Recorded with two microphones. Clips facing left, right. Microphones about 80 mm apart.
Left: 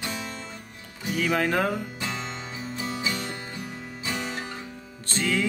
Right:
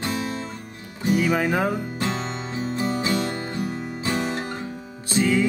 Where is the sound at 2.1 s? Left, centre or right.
Right.